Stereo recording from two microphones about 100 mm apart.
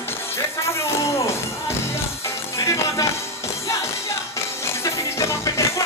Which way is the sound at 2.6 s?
30° left (ahead or behind).